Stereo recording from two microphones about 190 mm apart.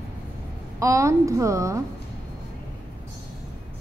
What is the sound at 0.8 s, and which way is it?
A woman's voice, 15° right (ahead or behind).